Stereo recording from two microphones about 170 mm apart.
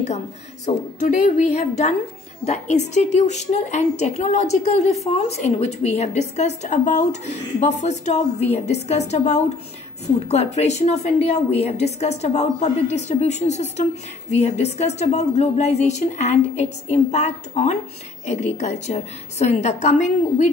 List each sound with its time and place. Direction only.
0.7 s a woman's voice: 50° left (ahead or behind)